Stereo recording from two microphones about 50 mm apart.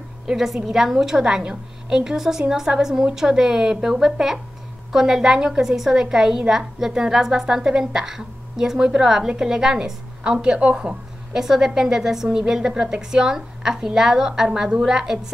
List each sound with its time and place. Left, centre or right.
0.3 s a woman's voice: centre; by 11.4 s right
11.4 s a woman's voice: centre